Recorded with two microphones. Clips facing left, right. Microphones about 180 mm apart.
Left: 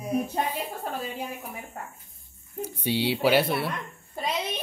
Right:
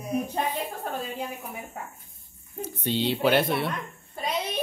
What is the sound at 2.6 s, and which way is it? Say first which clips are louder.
Speech: even; 10° left (ahead or behind).